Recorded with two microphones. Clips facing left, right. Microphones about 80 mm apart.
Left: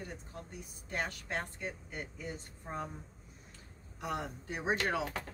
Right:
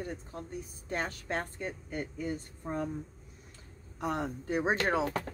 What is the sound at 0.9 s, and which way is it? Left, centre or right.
Speech, right.